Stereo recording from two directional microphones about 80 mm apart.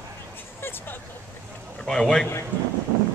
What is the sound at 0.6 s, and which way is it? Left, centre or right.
Vehicle, left.